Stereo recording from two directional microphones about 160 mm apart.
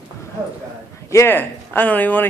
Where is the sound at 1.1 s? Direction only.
15° left (ahead or behind).